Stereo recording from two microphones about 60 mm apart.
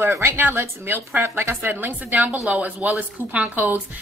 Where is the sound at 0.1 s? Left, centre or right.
Right.